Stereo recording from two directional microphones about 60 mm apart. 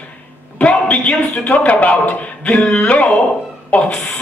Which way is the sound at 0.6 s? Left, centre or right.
Left.